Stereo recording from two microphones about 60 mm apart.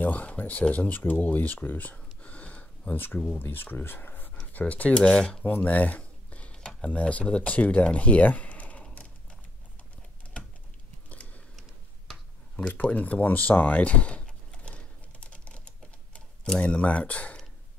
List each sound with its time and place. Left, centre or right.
0.0 s speech: left
4.9 s cutlery: centre
5.4 s a sound: left
6.5 s speech: centre
11.1 s a sound: left
12.8 s typing: left
16.4 s speech: centre